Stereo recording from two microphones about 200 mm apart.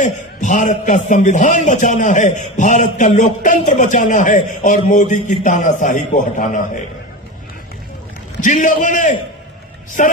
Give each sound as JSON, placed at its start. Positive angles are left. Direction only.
{"t": 0.0, "sound": "a man's voice", "side_deg": 40}
{"t": 8.4, "sound": "a man's voice", "side_deg": 40}